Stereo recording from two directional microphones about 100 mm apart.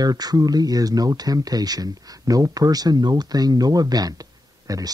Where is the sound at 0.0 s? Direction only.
40° right (ahead or behind).